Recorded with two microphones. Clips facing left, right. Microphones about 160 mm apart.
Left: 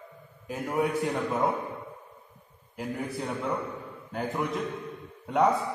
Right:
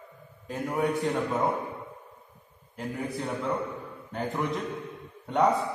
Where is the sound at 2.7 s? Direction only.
Centre (ahead or behind).